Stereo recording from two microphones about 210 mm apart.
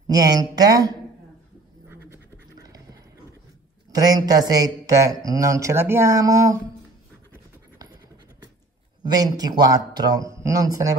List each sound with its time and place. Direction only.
0.0 s speech: 15° right (ahead or behind)
2.6 s horse: 15° right (ahead or behind)
3.9 s speech: 15° right (ahead or behind)
9.0 s speech: 20° right (ahead or behind)